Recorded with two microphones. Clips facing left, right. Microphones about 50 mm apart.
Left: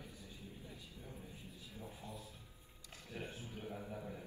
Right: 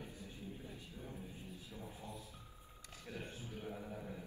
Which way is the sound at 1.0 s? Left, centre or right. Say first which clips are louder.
Right 4 dB; centre.